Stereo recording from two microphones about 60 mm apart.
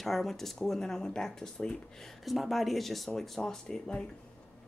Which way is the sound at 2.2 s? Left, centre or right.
Centre.